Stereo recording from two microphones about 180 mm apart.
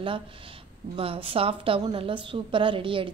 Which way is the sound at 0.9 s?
30° right (ahead or behind).